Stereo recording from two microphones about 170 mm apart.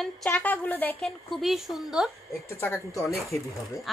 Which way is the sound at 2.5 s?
15° left (ahead or behind).